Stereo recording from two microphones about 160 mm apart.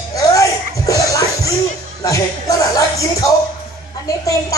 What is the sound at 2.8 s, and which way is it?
Music, 20° left (ahead or behind).